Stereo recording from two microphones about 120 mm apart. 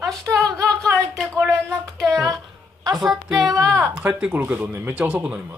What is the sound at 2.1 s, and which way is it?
Speech, 30° right (ahead or behind).